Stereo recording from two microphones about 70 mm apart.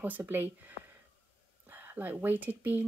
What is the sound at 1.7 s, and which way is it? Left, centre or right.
Speech, right.